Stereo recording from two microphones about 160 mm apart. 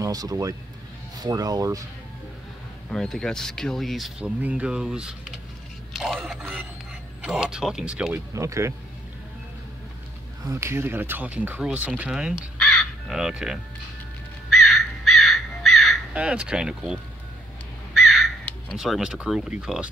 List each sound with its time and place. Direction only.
0.0 s speech: 25° right (ahead or behind)
2.9 s speech: 5° left (ahead or behind)
8.3 s speech: 20° right (ahead or behind)
10.4 s speech: 15° right (ahead or behind)
12.5 s crow: 5° left (ahead or behind)
18.8 s speech: 5° right (ahead or behind)